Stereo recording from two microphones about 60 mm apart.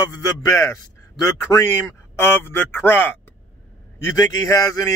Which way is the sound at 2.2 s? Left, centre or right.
Left.